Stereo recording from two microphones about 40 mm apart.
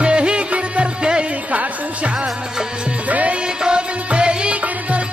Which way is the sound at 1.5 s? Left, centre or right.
Right.